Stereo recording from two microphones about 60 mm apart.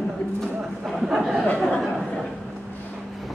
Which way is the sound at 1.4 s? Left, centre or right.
Left.